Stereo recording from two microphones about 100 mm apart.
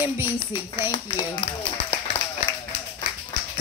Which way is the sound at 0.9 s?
45° left (ahead or behind).